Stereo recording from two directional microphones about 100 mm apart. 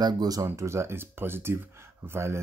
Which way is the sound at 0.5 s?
25° right (ahead or behind).